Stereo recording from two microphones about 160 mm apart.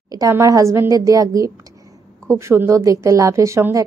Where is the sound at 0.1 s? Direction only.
20° right (ahead or behind).